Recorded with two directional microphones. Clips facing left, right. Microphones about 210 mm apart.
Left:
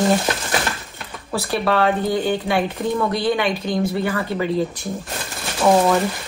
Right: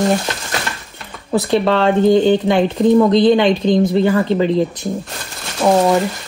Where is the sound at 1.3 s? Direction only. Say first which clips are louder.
Right 6 dB; 25° right (ahead or behind).